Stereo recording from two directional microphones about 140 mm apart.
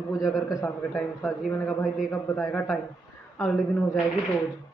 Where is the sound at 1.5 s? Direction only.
15° left (ahead or behind).